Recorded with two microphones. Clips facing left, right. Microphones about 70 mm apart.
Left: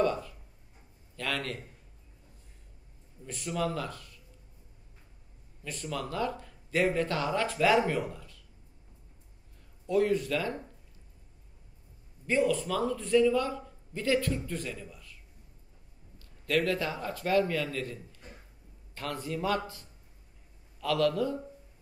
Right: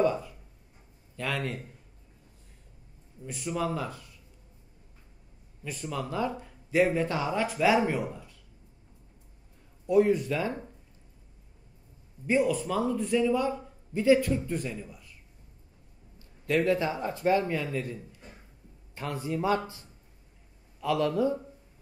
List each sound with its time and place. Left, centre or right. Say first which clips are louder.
0.0 s speech: right 2 dB; centre
3.3 s speech: right 1 dB; centre
5.6 s speech: right 2 dB; centre
9.8 s speech: right 4 dB; centre
12.3 s speech: right 1 dB; centre
16.2 s speech: right 2 dB; right
20.8 s a man's voice: right 1 dB; centre